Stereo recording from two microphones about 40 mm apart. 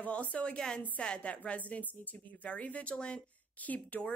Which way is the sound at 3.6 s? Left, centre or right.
Left.